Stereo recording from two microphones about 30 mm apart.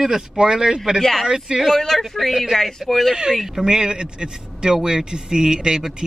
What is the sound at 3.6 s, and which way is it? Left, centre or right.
Speech, right.